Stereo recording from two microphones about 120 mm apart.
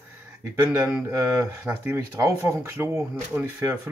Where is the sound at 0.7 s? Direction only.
10° right (ahead or behind).